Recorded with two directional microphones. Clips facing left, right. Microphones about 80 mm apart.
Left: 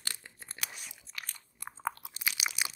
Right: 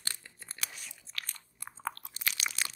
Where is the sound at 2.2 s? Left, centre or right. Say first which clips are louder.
Left 1 dB; centre.